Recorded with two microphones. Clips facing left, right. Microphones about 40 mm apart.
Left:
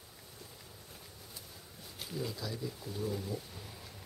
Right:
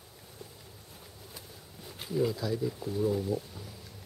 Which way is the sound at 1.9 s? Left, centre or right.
Centre.